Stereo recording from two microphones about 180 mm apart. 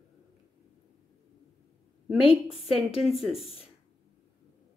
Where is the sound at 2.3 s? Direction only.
30° left (ahead or behind).